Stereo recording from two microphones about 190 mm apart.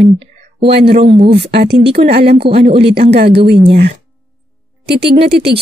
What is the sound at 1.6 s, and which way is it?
A woman's voice, 60° right (ahead or behind).